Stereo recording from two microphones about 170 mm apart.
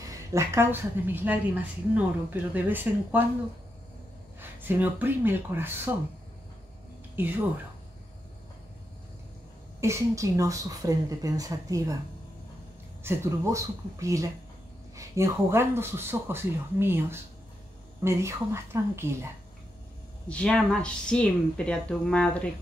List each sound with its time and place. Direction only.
0.0 s speech: 20° right (ahead or behind)
4.4 s speech: 10° right (ahead or behind)
7.2 s speech: 10° right (ahead or behind)
9.8 s speech: 15° right (ahead or behind)
13.0 s speech: 15° right (ahead or behind)
20.2 s speech: 5° left (ahead or behind)